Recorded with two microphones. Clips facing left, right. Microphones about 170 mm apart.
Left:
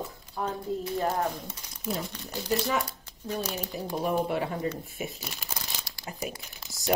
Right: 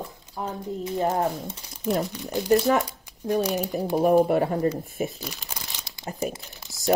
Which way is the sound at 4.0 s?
45° right (ahead or behind).